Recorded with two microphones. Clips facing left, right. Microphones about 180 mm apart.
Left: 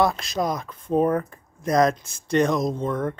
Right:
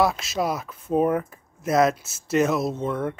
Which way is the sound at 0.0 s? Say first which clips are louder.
Even; 5° right (ahead or behind).